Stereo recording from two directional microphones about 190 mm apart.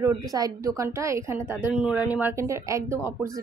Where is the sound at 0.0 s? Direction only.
20° right (ahead or behind).